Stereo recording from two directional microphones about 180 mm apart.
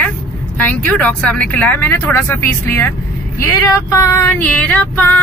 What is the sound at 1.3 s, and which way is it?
Female singing, 10° left (ahead or behind).